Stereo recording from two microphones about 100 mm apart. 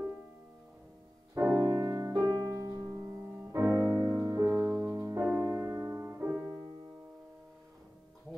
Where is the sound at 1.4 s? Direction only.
20° right (ahead or behind).